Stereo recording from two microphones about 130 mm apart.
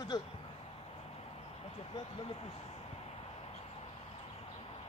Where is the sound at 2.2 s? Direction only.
45° left (ahead or behind).